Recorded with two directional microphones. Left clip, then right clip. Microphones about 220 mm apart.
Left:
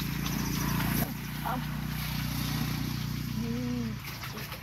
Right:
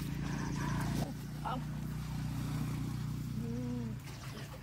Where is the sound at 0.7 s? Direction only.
15° right (ahead or behind).